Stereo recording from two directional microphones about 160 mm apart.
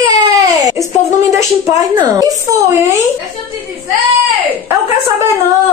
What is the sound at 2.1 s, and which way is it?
Speech, 20° right (ahead or behind).